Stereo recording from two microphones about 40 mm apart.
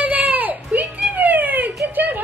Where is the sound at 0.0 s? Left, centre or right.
Right.